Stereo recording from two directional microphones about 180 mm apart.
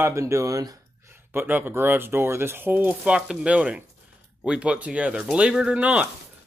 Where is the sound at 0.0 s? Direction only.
15° right (ahead or behind).